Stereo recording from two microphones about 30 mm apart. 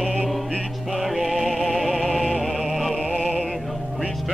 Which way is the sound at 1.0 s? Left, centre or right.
Centre.